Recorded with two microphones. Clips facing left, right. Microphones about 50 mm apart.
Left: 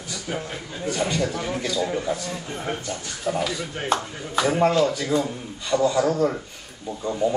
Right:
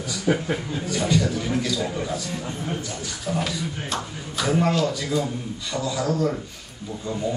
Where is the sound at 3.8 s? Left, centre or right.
Left.